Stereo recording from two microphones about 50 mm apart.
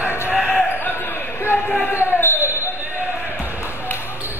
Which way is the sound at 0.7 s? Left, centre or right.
Left.